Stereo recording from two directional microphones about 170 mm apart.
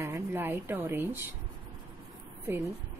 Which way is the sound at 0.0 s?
15° right (ahead or behind).